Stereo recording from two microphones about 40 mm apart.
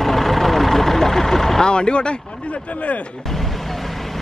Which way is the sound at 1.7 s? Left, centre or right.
Left.